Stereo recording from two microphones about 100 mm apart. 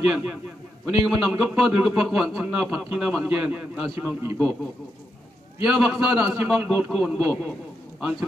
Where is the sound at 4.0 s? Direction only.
25° right (ahead or behind).